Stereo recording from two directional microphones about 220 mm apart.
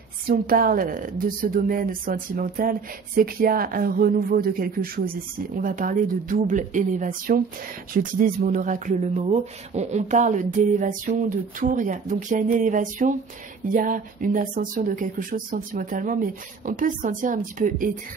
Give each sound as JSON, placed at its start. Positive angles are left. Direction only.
{"t": 0.3, "sound": "speech", "side_deg": -40}